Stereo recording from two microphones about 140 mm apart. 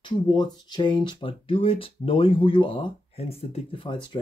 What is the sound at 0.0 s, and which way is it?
Speech, 35° left (ahead or behind).